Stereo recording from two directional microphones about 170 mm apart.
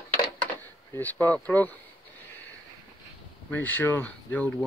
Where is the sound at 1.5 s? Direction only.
10° left (ahead or behind).